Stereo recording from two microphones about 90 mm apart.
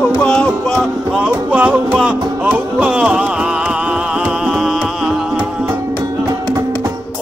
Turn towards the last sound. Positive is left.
turn(degrees=-5)  # may be behind; listen again after turning